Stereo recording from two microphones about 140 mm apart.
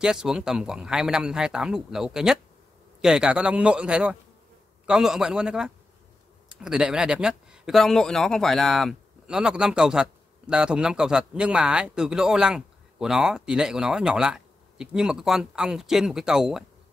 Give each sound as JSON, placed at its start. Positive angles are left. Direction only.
{"t": 0.0, "sound": "a man's voice", "side_deg": -5}